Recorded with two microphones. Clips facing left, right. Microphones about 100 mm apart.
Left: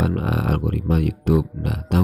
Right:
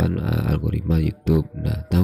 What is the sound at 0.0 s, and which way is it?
Speech, 50° left (ahead or behind).